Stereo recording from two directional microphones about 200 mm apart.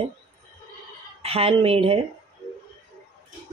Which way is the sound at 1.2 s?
30° right (ahead or behind).